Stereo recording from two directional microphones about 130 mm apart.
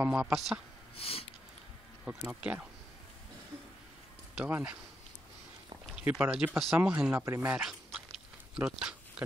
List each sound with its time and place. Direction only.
0.0 s speech: 10° right (ahead or behind)
0.9 s sniff: 50° left (ahead or behind)
2.0 s speech: 10° right (ahead or behind)
4.4 s speech: 15° right (ahead or behind)
6.0 s speech: 10° right (ahead or behind)
7.9 s chewing: 5° right (ahead or behind)